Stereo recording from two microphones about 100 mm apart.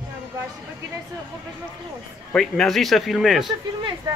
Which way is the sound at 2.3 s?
5° left (ahead or behind).